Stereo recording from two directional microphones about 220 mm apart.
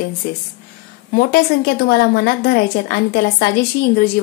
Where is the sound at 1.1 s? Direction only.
45° left (ahead or behind).